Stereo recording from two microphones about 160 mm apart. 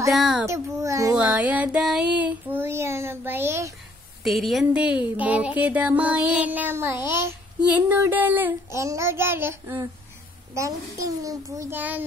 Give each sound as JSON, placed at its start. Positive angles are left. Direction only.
{"t": 0.1, "sound": "a child's voice", "side_deg": 0}
{"t": 0.5, "sound": "a child's voice", "side_deg": -20}
{"t": 1.1, "sound": "child singing", "side_deg": -5}
{"t": 4.2, "sound": "a child's voice", "side_deg": 0}